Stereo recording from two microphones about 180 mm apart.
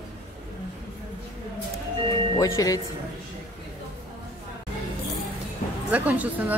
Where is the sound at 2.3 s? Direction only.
20° left (ahead or behind).